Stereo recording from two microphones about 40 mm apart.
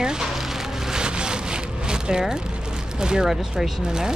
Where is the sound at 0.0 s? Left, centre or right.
Centre.